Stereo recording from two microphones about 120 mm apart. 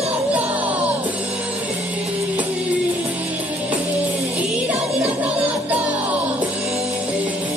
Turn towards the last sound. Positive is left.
turn(degrees=-10)  # may be behind; listen again after turning